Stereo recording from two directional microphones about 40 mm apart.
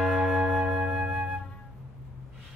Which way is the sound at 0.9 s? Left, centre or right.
Right.